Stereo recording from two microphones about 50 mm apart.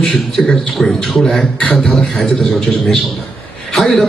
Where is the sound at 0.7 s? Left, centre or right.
Centre.